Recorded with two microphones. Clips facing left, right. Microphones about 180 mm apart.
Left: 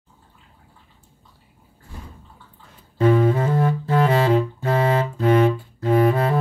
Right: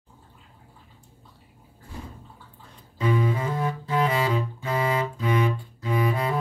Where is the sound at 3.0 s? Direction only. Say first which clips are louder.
Left 7 dB; 50° left (ahead or behind).